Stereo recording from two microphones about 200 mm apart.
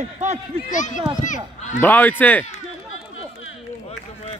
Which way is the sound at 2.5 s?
85° left.